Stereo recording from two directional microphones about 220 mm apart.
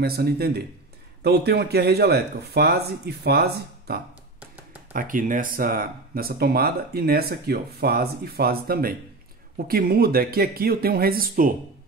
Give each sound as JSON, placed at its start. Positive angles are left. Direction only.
{"t": 0.0, "sound": "speech", "side_deg": -45}